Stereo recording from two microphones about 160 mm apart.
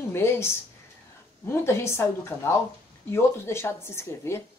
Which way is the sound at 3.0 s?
15° left (ahead or behind).